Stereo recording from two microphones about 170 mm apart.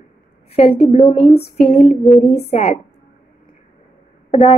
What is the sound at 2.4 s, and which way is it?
Speech, 35° left (ahead or behind).